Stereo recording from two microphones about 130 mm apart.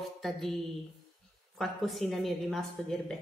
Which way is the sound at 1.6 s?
Centre (ahead or behind).